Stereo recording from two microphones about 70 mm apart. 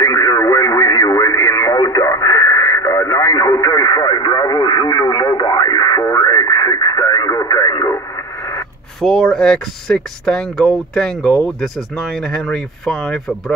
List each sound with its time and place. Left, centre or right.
0.0 s radio: left
9.0 s speech: centre